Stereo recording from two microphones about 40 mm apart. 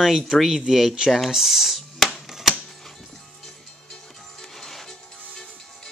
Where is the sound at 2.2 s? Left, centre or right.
Centre.